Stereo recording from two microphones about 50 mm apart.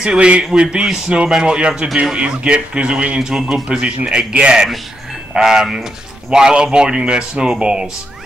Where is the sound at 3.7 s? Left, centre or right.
Centre.